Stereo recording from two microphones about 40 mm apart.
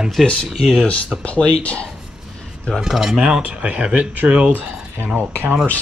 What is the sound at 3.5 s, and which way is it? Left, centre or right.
Speech, right.